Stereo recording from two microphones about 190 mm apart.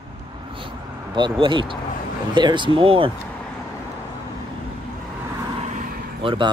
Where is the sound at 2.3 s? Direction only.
25° right (ahead or behind).